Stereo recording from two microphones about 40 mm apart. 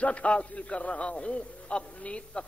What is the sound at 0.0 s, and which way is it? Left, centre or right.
A man's voice, left.